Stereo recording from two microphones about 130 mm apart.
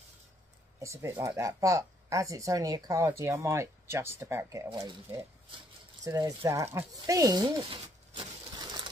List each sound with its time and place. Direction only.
0.7 s speech: 20° right (ahead or behind)
6.0 s speech: 25° right (ahead or behind)
8.1 s a sound: 35° right (ahead or behind)